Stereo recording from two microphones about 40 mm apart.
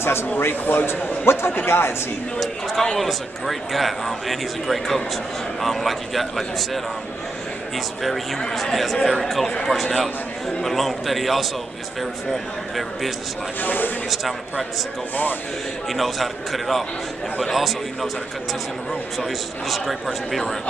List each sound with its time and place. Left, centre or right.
0.0 s speech: left
0.4 s a man's voice: left
3.0 s speech: centre
13.6 s speech: left
14.1 s speech: centre
15.9 s speech: centre
19.1 s speech: centre